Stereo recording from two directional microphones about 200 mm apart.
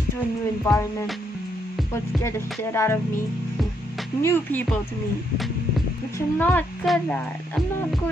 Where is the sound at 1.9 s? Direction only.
15° left (ahead or behind).